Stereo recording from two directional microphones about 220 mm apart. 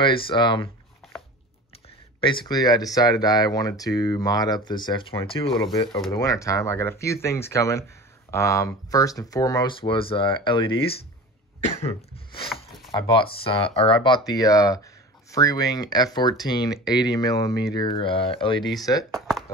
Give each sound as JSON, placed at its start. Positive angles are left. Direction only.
{"t": 0.0, "sound": "speech", "side_deg": 20}
{"t": 2.1, "sound": "speech", "side_deg": 25}
{"t": 6.1, "sound": "speech", "side_deg": 15}
{"t": 12.4, "sound": "a sound", "side_deg": 0}
{"t": 12.9, "sound": "speech", "side_deg": 20}
{"t": 18.6, "sound": "speech", "side_deg": 0}